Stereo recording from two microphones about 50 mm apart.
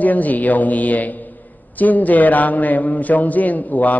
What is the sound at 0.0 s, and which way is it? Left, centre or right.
Speech, left.